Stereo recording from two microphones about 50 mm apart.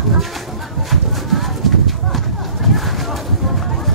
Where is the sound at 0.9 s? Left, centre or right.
Centre.